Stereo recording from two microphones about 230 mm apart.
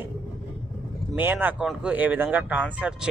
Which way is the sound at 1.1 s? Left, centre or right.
Centre.